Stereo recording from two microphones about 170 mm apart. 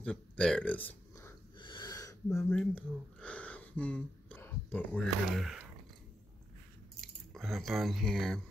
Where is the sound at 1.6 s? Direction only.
25° left (ahead or behind).